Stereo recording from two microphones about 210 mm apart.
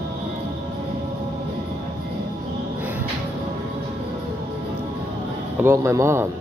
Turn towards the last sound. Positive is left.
turn(degrees=-15)  # may be behind; listen again after turning